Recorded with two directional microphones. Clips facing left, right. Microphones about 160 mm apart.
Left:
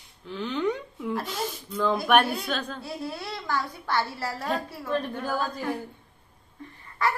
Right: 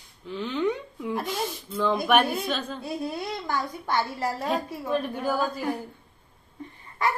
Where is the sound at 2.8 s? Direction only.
20° right (ahead or behind).